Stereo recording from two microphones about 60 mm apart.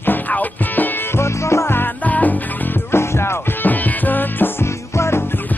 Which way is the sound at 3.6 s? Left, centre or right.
Left.